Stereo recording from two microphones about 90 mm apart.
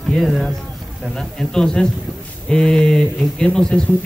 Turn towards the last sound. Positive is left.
turn(degrees=5)  # may be behind; listen again after turning